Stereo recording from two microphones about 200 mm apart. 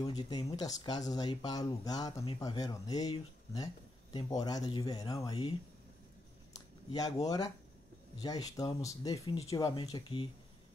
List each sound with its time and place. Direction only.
0.0 s speech: 20° left (ahead or behind)
6.9 s speech: 20° left (ahead or behind)